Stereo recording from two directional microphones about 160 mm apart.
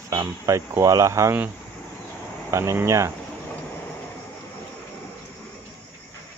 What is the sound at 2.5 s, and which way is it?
Speech, 15° right (ahead or behind).